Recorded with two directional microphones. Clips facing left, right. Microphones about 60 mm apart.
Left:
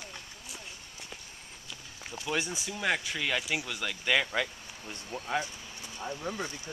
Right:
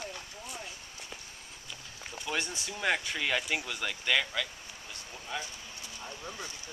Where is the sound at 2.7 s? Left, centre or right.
Centre.